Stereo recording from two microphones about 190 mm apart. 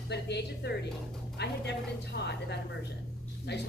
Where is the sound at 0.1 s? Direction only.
60° left (ahead or behind).